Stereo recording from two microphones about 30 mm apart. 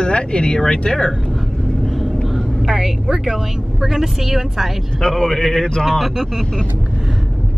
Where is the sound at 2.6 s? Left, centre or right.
Centre.